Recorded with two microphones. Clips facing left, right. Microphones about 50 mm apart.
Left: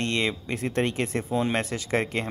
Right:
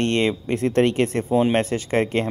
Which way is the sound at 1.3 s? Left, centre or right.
Right.